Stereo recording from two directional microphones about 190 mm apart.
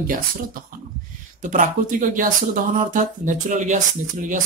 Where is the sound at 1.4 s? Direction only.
45° right (ahead or behind).